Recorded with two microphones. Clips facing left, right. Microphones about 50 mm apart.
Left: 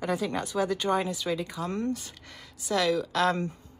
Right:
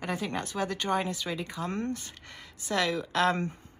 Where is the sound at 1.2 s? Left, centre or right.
Centre.